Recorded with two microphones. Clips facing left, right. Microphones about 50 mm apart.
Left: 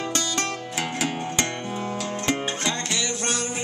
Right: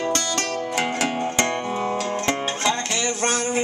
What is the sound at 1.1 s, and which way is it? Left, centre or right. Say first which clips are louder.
Music: right 5 dB; right.